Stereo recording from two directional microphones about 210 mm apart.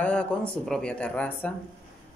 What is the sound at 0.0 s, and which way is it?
Speech, 5° left (ahead or behind).